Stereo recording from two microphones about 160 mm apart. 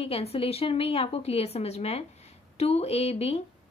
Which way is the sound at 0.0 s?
40° left (ahead or behind).